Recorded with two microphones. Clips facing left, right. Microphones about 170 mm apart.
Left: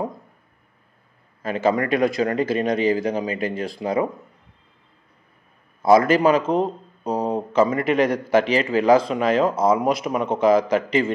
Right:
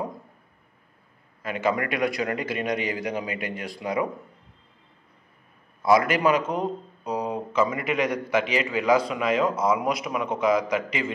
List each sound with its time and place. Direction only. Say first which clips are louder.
1.4 s a man's voice: left 5 dB; 30° left (ahead or behind)
5.8 s a man's voice: left 5 dB; 30° left (ahead or behind)